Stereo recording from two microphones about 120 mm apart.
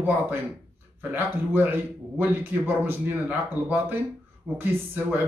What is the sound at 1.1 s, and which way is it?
Speech, 15° right (ahead or behind).